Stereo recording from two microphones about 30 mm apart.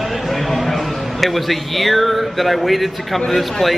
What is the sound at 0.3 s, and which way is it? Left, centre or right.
A man's voice, centre.